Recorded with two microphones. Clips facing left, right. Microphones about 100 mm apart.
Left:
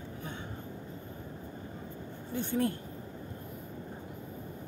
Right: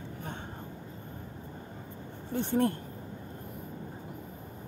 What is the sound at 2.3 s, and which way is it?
Speech, 45° right (ahead or behind).